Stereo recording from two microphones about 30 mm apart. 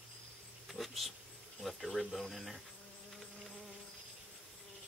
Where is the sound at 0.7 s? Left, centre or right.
Centre.